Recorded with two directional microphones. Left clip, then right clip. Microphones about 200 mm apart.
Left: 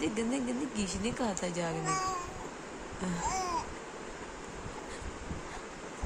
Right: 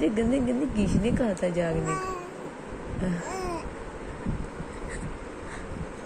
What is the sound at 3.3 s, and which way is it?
Babbling, 20° left (ahead or behind).